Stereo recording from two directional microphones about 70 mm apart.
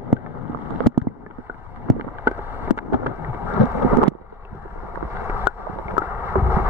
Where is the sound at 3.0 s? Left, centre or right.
Right.